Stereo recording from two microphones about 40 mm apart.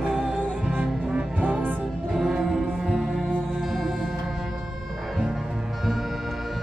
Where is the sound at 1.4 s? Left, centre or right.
Right.